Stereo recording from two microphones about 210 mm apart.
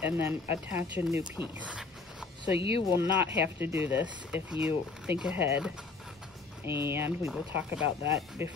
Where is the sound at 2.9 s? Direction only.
10° right (ahead or behind).